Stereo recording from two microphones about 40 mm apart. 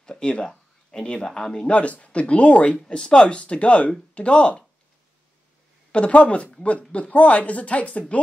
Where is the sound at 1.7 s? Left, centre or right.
Left.